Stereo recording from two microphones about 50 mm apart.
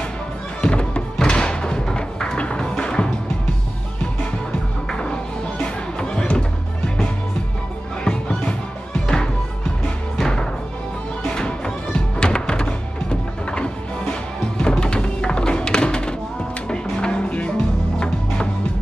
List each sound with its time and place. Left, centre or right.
0.6 s music: centre
1.1 s thump: centre
2.4 s music: centre
4.8 s music: centre
8.0 s music: centre